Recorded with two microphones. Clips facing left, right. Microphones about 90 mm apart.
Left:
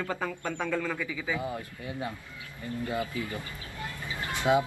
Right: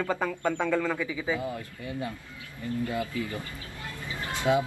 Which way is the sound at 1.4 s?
25° left (ahead or behind).